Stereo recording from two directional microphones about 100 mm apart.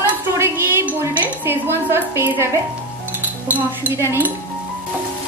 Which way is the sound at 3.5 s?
20° right (ahead or behind).